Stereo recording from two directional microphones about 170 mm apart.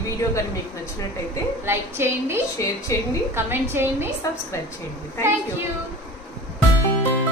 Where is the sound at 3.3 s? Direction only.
15° right (ahead or behind).